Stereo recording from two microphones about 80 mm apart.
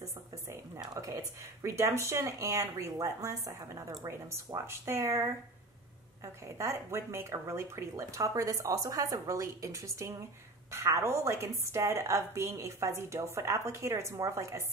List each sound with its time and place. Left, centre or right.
0.9 s speech: right
4.6 s speech: right